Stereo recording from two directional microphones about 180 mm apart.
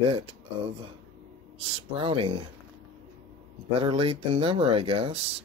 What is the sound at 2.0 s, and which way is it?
Speech, 30° right (ahead or behind).